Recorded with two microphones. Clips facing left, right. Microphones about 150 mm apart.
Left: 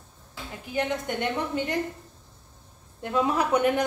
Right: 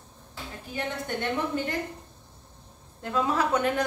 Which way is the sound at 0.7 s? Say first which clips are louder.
Left 4 dB; 15° left (ahead or behind).